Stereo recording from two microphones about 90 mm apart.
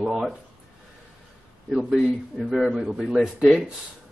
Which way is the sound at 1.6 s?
5° right (ahead or behind).